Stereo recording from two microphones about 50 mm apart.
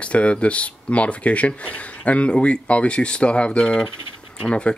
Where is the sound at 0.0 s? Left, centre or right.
Left.